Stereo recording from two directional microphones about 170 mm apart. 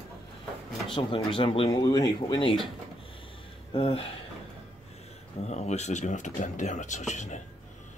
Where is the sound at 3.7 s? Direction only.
35° left (ahead or behind).